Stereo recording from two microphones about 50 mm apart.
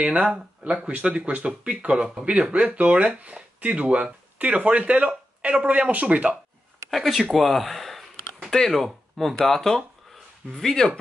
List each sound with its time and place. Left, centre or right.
0.0 s speech: right
6.9 s speech: centre